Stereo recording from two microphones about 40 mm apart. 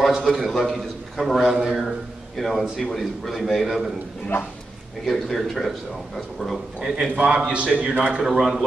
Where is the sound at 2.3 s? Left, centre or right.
Centre.